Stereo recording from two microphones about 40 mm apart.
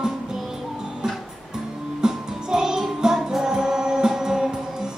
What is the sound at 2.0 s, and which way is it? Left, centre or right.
Music, centre.